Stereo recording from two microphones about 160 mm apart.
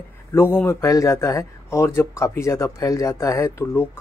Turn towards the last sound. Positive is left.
turn(degrees=20)  # may be behind; listen again after turning